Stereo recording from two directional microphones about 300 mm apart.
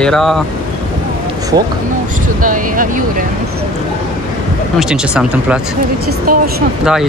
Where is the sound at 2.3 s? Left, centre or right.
Right.